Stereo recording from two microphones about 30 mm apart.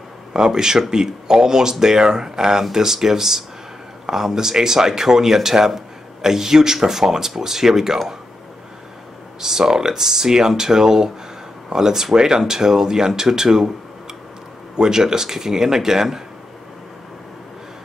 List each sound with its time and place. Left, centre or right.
0.3 s speech: right
9.4 s speech: centre
14.8 s speech: centre